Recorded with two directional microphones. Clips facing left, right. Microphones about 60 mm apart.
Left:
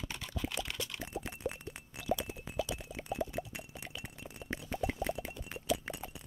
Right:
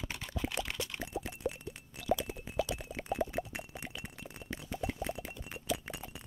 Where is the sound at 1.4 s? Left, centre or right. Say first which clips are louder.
Right 2 dB; right.